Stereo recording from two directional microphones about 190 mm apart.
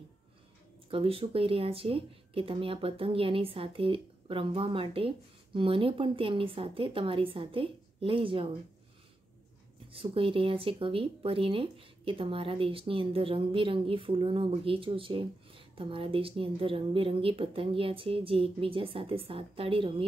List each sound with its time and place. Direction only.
0.8 s speech: 30° right (ahead or behind)
9.9 s speech: 30° right (ahead or behind)